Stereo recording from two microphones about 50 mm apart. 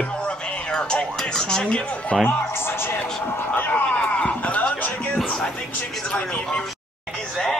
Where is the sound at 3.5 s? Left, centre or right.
Left.